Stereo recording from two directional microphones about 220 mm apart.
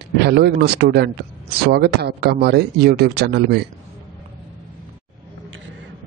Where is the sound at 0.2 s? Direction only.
50° right (ahead or behind).